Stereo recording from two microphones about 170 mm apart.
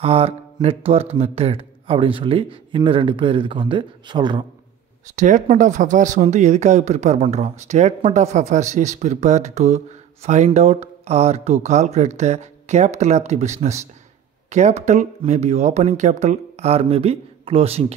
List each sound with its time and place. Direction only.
0.0 s speech: 35° right (ahead or behind)
5.1 s speech: 45° right (ahead or behind)